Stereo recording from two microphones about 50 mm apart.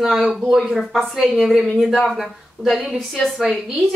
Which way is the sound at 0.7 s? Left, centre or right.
Centre.